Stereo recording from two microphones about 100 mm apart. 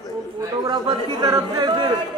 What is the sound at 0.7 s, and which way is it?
Speech, 40° right (ahead or behind).